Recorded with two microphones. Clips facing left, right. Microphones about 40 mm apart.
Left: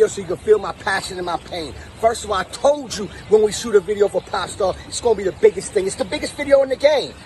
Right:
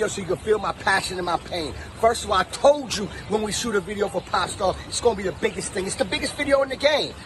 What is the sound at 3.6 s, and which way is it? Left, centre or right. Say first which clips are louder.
Speech: left 8 dB; right.